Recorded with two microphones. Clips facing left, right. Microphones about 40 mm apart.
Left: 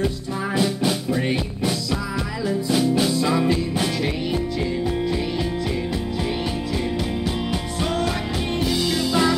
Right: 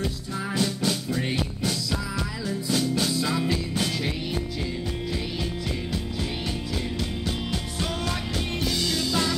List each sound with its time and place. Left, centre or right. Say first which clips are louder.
0.6 s music: left 4 dB; centre
3.1 s music: left 6 dB; centre
8.5 s music: left 5 dB; centre